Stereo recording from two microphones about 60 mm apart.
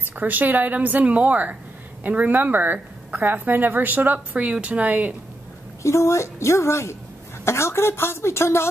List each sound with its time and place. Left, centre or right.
0.2 s a woman's voice: right
5.8 s a woman's voice: left